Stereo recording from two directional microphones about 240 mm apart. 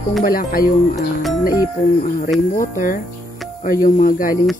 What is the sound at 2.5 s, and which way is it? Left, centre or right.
Speech, left.